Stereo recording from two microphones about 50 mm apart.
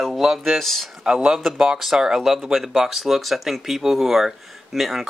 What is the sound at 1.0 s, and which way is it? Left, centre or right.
Speech, centre.